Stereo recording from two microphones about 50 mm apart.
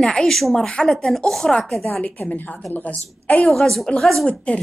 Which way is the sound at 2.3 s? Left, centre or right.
Left.